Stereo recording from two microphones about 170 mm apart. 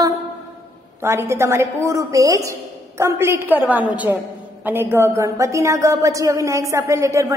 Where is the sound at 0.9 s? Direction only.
15° right (ahead or behind).